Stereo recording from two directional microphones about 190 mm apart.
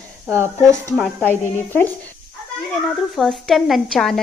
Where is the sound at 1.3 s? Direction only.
10° left (ahead or behind).